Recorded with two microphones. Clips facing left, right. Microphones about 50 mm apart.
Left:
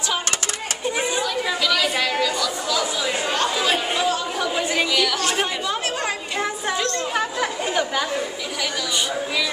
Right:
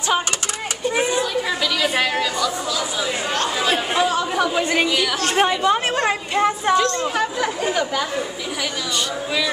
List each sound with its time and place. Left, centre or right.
1.2 s a woman's voice: centre
3.4 s chatter: centre
3.9 s speech: right
5.2 s speech: right
6.8 s speech: centre